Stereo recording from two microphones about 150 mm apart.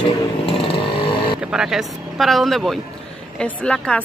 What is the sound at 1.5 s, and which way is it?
A woman's voice, 5° right (ahead or behind).